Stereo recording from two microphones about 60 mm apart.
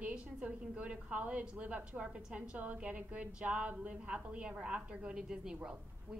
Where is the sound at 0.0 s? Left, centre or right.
Centre.